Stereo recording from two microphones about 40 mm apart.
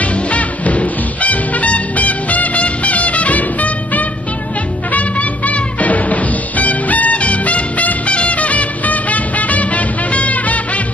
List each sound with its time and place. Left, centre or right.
0.0 s music: left